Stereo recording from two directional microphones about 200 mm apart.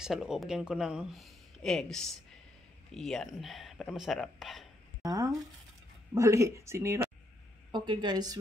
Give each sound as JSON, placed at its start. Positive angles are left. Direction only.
{"t": 0.0, "sound": "speech", "side_deg": 0}
{"t": 5.0, "sound": "a woman's voice", "side_deg": -15}